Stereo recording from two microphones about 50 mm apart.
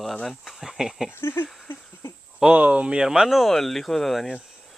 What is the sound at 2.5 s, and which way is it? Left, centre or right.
Speech, right.